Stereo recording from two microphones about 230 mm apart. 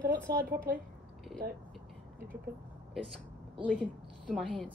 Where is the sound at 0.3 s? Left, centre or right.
Right.